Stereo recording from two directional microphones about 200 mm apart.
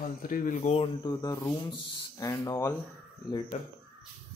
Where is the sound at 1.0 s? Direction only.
20° left (ahead or behind).